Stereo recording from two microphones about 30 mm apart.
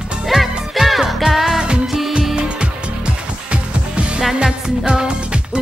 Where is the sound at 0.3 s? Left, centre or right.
Centre.